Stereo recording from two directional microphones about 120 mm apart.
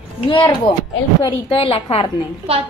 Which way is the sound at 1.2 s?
50° left (ahead or behind).